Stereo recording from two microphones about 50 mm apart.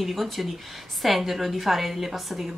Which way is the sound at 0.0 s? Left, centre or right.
Centre.